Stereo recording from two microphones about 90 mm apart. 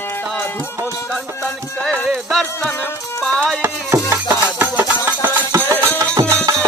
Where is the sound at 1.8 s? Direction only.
5° left (ahead or behind).